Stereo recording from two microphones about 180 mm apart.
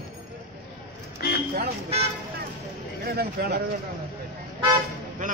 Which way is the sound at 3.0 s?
60° right (ahead or behind).